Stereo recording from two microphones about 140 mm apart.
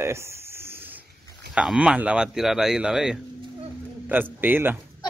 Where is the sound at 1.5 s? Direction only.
10° right (ahead or behind).